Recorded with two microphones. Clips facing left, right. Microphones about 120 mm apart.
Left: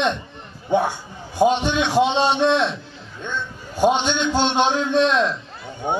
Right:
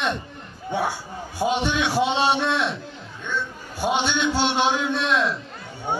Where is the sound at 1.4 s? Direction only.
10° right (ahead or behind).